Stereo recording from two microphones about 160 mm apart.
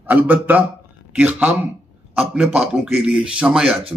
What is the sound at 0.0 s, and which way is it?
A man's voice, 10° right (ahead or behind).